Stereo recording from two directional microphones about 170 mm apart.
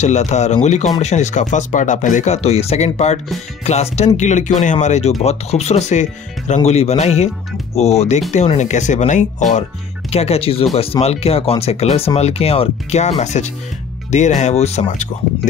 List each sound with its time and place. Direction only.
0.0 s speech: 40° left (ahead or behind)